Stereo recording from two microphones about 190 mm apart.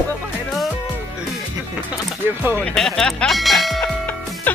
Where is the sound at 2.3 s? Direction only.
10° right (ahead or behind).